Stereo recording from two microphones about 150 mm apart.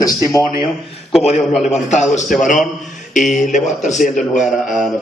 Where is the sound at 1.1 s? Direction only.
Centre (ahead or behind).